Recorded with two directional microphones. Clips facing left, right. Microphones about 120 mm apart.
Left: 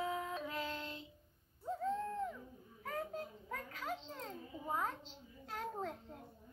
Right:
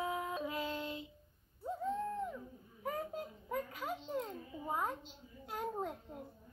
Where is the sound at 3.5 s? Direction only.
15° right (ahead or behind).